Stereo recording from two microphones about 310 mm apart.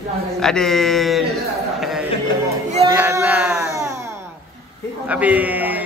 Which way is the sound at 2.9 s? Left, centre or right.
Centre.